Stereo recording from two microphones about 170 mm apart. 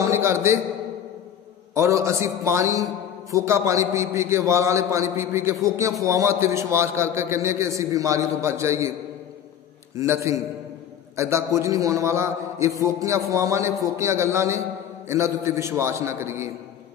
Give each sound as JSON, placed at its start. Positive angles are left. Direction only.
{"t": 0.0, "sound": "a sound", "side_deg": -15}
{"t": 1.7, "sound": "a man's voice", "side_deg": -15}
{"t": 9.9, "sound": "a man's voice", "side_deg": -15}